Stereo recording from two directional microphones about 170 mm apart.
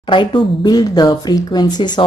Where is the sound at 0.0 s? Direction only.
30° left (ahead or behind).